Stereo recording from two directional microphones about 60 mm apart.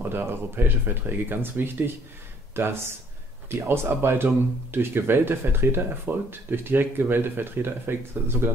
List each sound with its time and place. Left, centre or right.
0.1 s speech: right